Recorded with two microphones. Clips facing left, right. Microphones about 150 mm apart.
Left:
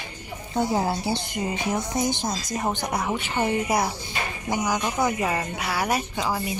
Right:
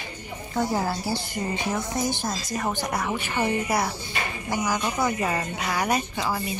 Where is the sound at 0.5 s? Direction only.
20° left (ahead or behind).